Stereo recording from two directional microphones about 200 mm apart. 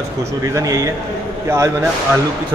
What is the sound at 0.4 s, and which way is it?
A man's voice, 15° right (ahead or behind).